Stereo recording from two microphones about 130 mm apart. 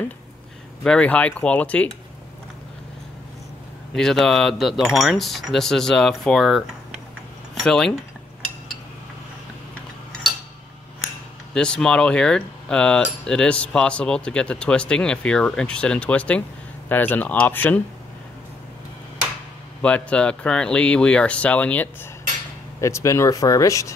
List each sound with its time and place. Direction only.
0.8 s speech: 10° left (ahead or behind)
3.9 s speech: 5° left (ahead or behind)
11.5 s speech: 5° left (ahead or behind)
19.8 s speech: 10° left (ahead or behind)
22.8 s speech: 20° left (ahead or behind)